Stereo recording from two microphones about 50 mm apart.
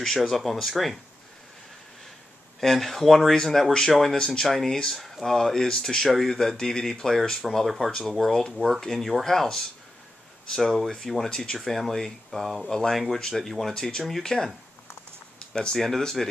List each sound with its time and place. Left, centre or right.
0.0 s speech: centre
2.6 s speech: centre
3.3 s speech: centre
7.4 s speech: centre
11.2 s speech: centre
11.5 s speech: centre
12.9 s speech: centre
15.3 s a sound: centre
15.8 s speech: centre